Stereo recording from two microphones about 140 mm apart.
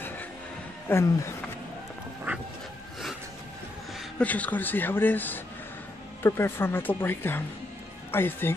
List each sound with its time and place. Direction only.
0.9 s speech: 15° left (ahead or behind)
2.3 s dog: 15° right (ahead or behind)
4.2 s speech: 10° left (ahead or behind)